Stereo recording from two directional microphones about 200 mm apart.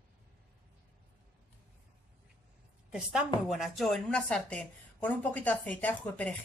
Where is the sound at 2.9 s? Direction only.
5° right (ahead or behind).